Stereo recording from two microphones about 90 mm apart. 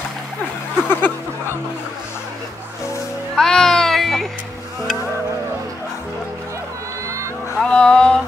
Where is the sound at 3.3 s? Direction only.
5° left (ahead or behind).